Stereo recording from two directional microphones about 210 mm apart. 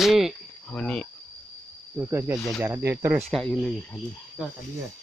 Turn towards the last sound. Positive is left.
turn(degrees=5)  # may be behind; listen again after turning